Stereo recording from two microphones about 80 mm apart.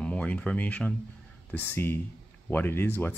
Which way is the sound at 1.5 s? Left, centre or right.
Left.